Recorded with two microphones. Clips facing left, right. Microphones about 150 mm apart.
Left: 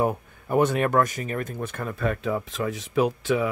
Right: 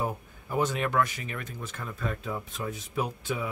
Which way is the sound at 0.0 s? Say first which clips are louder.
Left 8 dB; 60° left (ahead or behind).